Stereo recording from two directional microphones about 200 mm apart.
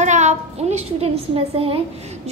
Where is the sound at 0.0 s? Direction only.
35° right (ahead or behind).